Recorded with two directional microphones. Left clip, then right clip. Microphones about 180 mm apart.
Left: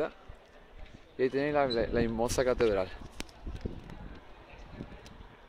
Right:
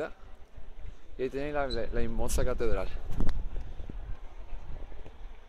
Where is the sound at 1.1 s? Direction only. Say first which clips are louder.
Left 4 dB; 15° left (ahead or behind).